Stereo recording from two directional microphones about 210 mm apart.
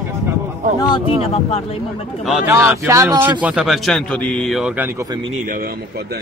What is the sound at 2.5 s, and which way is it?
Speech, 15° right (ahead or behind).